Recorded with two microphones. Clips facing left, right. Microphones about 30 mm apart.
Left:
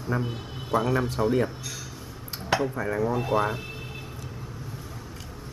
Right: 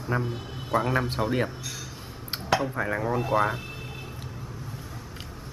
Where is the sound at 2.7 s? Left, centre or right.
Right.